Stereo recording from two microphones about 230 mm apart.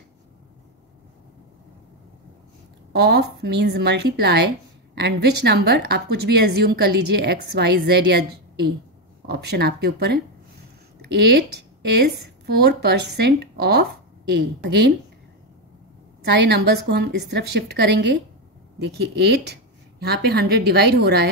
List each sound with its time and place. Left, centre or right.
2.9 s a woman's voice: right
12.6 s a woman's voice: right
16.3 s a woman's voice: right